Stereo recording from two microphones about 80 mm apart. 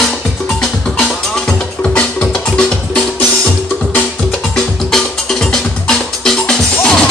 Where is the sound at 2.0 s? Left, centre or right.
Centre.